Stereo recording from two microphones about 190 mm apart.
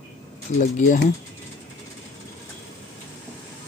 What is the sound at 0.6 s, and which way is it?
Speech, 40° left (ahead or behind).